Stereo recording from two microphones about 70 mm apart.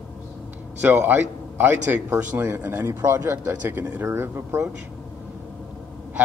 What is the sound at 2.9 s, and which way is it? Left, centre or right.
A man's voice, right.